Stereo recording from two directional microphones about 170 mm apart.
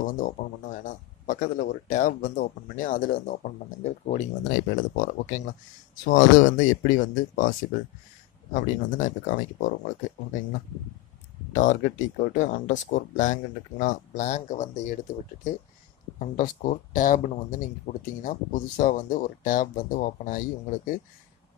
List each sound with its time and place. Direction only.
0.0 s speech: 50° left (ahead or behind)
8.5 s speech: 50° left (ahead or behind)
11.5 s speech: 45° left (ahead or behind)
16.2 s speech: 45° left (ahead or behind)